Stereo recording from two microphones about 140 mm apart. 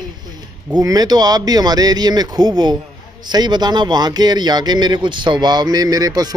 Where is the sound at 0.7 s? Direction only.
25° right (ahead or behind).